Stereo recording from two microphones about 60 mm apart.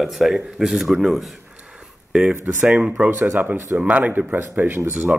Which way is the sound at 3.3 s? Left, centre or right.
Right.